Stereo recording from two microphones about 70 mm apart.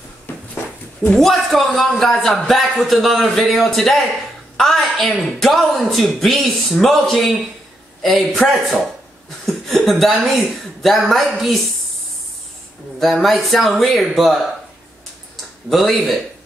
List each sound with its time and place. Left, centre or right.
0.3 s a sound: left
1.1 s speech: centre
13.0 s speech: centre
15.7 s speech: centre